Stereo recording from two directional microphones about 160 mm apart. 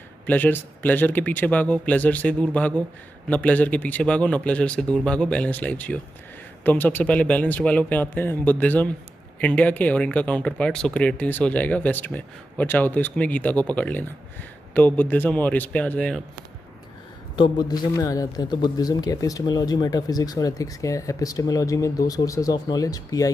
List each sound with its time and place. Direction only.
0.3 s speech: 10° left (ahead or behind)
17.4 s a man's voice: 25° left (ahead or behind)